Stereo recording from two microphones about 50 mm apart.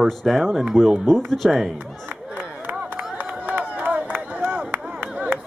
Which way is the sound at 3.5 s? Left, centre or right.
Right.